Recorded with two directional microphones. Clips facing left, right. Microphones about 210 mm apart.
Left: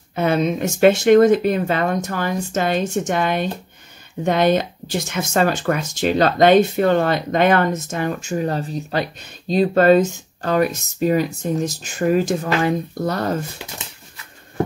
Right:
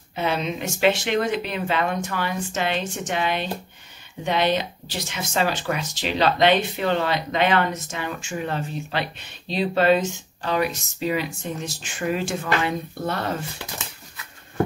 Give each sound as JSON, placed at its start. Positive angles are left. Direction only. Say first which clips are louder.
{"t": 0.1, "sound": "speech", "louder": "left 7 dB", "side_deg": 50}